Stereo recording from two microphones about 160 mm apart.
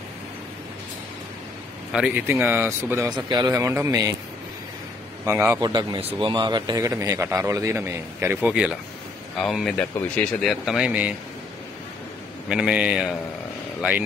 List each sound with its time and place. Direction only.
1.9 s a man's voice: 5° right (ahead or behind)
3.2 s a man's voice: 30° right (ahead or behind)
5.2 s a man's voice: 15° right (ahead or behind)
5.6 s a man's voice: 25° right (ahead or behind); by 11.1 s 5° right (ahead or behind)
12.4 s speech: 5° right (ahead or behind)